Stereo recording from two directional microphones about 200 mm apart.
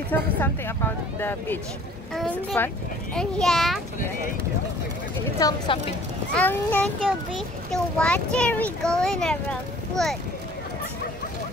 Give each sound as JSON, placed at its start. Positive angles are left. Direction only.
{"t": 0.1, "sound": "speech", "side_deg": 10}
{"t": 2.1, "sound": "a child's voice", "side_deg": 5}
{"t": 5.4, "sound": "speech", "side_deg": 15}
{"t": 6.3, "sound": "a child's voice", "side_deg": 5}